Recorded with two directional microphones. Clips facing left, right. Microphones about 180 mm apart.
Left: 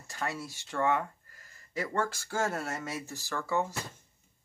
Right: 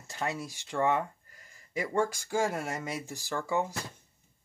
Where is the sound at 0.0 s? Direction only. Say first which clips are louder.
Right 2 dB; 20° right (ahead or behind).